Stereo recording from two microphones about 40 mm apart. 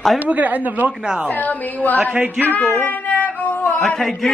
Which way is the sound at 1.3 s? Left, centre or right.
Left.